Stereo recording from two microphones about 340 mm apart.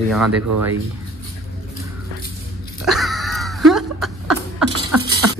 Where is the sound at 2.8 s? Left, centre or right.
Centre.